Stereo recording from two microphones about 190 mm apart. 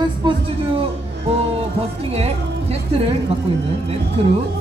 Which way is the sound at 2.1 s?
35° right (ahead or behind).